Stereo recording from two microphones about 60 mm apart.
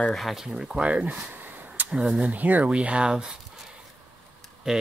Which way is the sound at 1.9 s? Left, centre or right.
Centre.